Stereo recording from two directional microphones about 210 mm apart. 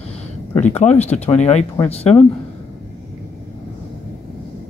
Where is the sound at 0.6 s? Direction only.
35° left (ahead or behind).